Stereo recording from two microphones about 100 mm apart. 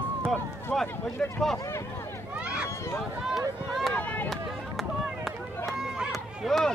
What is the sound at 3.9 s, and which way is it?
Run, 15° left (ahead or behind).